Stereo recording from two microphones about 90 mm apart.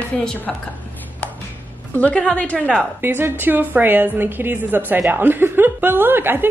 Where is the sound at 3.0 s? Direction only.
25° right (ahead or behind).